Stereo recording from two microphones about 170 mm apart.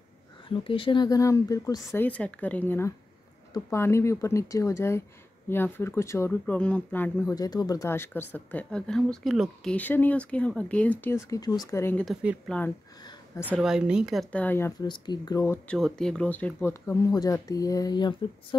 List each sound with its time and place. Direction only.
0.5 s speech: 30° left (ahead or behind); by 12.0 s 15° left (ahead or behind)
12.0 s a woman's voice: 5° right (ahead or behind)
12.4 s speech: 10° left (ahead or behind)
13.6 s a woman's voice: 5° right (ahead or behind)
14.3 s speech: 10° left (ahead or behind)
14.8 s speech: 25° left (ahead or behind)
15.8 s speech: 5° left (ahead or behind); by 18.6 s 25° left (ahead or behind)